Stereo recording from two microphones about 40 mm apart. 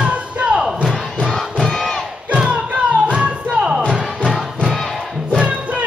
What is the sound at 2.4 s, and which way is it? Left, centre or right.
Music, right.